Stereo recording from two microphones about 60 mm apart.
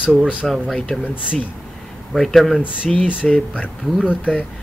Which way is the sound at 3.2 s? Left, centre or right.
Centre.